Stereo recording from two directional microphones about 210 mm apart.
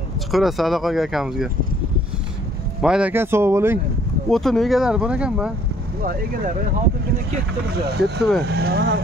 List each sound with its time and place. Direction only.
0.3 s speech: centre (ahead or behind)
2.8 s speech: 5° right (ahead or behind)
4.3 s speech: centre (ahead or behind)
8.0 s speech: 5° left (ahead or behind)
8.5 s speech: 45° right (ahead or behind)